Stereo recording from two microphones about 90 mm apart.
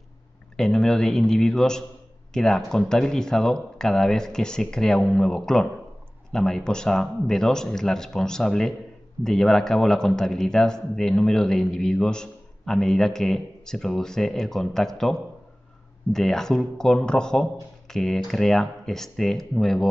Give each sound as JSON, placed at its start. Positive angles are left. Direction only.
{"t": 0.6, "sound": "speech", "side_deg": 5}